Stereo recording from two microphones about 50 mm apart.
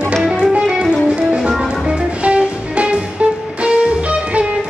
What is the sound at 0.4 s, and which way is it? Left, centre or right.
Music, centre.